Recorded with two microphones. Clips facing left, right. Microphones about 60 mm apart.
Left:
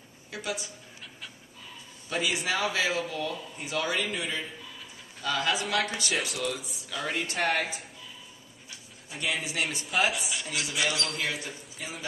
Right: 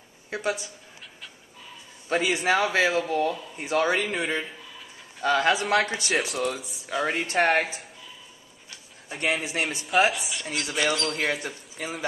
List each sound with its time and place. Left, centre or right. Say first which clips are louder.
0.3 s speech: right 6 dB; right
2.0 s speech: right 6 dB; right
5.6 s speech: right 6 dB; centre
5.9 s speech: right 3 dB; right
6.1 s speech: right 6 dB; centre
6.9 s speech: right 5 dB; right
7.4 s speech: right 4 dB; centre
9.3 s speech: right 3 dB; right
9.8 s speech: right 6 dB; centre
10.7 s speech: right 5 dB; right
11.0 s speech: right 5 dB; centre
11.8 s speech: right 6 dB; right